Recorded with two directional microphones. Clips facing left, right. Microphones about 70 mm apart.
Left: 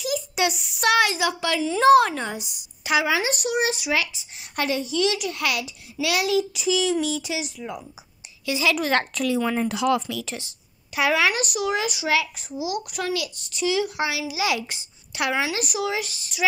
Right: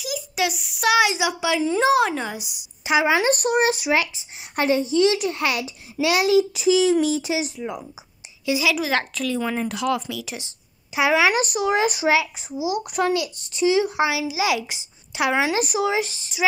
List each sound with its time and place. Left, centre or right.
0.0 s a child's voice: centre
1.0 s a child's voice: centre
2.8 s a child's voice: right
3.2 s speech: right
8.5 s a child's voice: centre
8.7 s a child's voice: centre
11.3 s speech: right
12.1 s a child's voice: centre
15.4 s a child's voice: right